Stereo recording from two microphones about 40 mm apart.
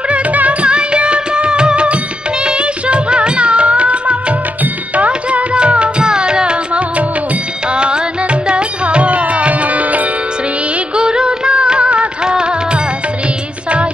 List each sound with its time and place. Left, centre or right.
0.1 s music: right
11.0 s music: right